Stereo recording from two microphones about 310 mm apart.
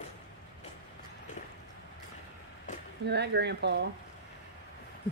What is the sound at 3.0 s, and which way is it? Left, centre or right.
Speech, right.